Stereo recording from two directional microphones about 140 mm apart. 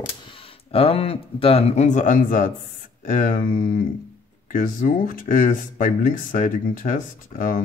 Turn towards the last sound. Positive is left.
turn(degrees=75)  # may be behind; listen again after turning